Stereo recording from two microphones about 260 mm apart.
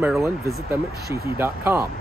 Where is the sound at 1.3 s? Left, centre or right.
Centre.